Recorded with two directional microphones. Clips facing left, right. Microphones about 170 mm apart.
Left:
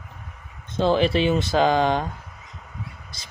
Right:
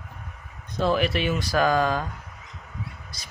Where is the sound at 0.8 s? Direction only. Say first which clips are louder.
Left 4 dB; 25° left (ahead or behind).